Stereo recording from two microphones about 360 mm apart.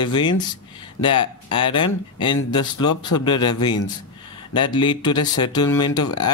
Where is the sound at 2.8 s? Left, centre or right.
Left.